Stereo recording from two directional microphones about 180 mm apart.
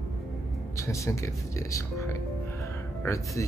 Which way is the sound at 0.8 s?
15° left (ahead or behind).